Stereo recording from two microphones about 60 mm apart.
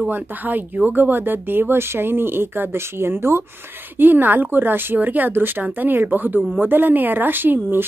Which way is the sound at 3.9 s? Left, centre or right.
Right.